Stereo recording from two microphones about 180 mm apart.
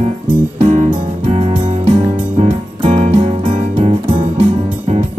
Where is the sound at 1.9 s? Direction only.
30° right (ahead or behind).